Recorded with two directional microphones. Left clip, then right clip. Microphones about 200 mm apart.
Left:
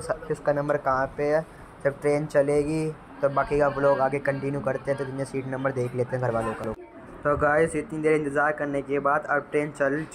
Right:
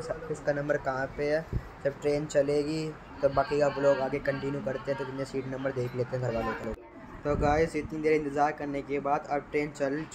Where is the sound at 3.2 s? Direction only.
10° left (ahead or behind).